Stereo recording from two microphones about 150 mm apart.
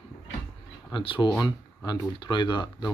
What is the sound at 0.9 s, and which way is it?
Speech, 35° left (ahead or behind).